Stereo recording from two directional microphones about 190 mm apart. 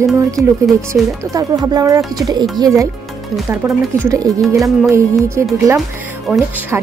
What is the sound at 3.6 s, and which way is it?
Music, 10° right (ahead or behind).